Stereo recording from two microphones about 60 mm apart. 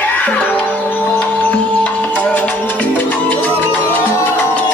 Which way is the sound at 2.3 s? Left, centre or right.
Left.